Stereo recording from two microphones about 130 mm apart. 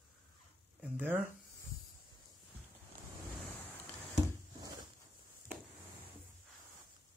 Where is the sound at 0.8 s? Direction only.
15° right (ahead or behind).